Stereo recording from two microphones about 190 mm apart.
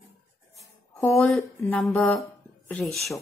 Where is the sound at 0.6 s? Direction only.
15° left (ahead or behind).